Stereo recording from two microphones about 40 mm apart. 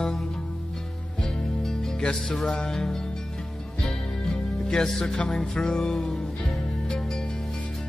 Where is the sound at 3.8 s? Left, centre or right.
Centre.